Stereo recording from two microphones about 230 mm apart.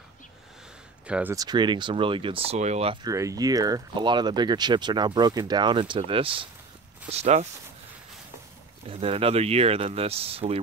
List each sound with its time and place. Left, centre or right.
1.0 s speech: centre; by 7.4 s right
8.8 s speech: right